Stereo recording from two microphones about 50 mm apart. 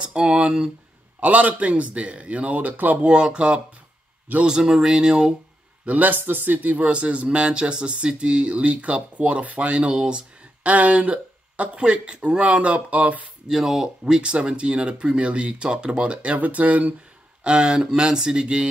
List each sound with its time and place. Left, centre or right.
0.0 s speech: centre
1.2 s speech: right
3.1 s speech: centre
5.9 s a man's voice: right
13.5 s speech: centre; by 16.9 s right
17.4 s speech: centre